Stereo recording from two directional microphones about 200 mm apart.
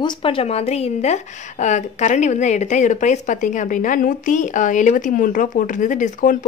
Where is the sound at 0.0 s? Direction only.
25° left (ahead or behind).